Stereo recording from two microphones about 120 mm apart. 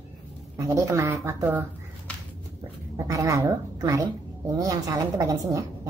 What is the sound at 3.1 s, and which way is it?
Speech, 30° right (ahead or behind).